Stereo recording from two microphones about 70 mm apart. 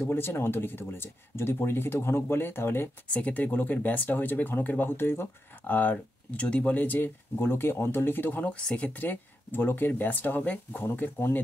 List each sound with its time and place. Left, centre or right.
0.1 s speech: left
3.1 s speech: left